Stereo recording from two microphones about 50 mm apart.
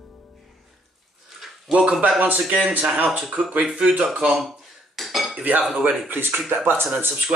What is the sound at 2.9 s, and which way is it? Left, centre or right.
Speech, right.